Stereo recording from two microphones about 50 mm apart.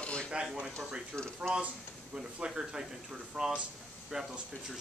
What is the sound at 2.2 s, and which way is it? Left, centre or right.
A man's voice, centre.